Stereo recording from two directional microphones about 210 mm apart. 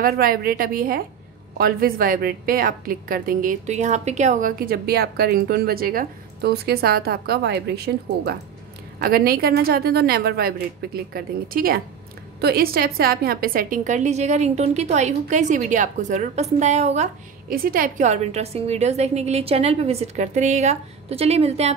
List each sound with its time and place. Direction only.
0.0 s a woman's voice: 45° right (ahead or behind)